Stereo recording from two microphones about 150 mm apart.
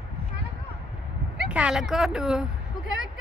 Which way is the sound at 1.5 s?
5° right (ahead or behind).